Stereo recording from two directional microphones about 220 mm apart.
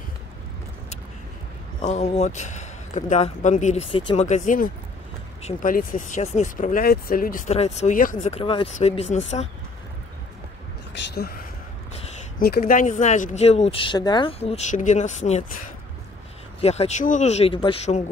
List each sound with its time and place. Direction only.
1.8 s speech: 30° left (ahead or behind)
11.1 s speech: 45° left (ahead or behind)
16.6 s speech: 30° left (ahead or behind)